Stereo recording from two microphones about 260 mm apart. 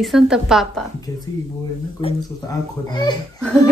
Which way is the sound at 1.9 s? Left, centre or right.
Centre.